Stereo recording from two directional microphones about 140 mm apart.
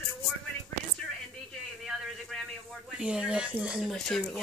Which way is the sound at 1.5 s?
Centre (ahead or behind).